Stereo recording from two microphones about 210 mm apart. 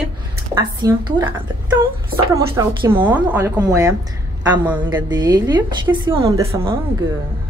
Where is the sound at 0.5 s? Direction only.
15° right (ahead or behind).